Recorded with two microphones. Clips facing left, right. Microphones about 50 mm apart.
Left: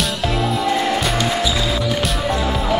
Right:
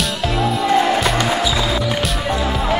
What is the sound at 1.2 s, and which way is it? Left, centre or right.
Music, centre.